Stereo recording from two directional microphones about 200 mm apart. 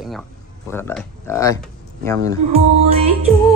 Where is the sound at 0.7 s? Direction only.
10° left (ahead or behind).